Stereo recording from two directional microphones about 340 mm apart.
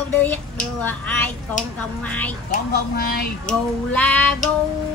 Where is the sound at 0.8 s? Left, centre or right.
Centre.